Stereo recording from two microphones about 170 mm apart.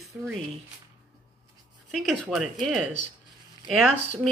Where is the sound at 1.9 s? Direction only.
Centre (ahead or behind).